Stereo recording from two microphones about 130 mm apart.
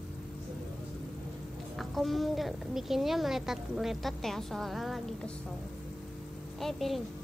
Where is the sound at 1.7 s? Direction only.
Centre (ahead or behind).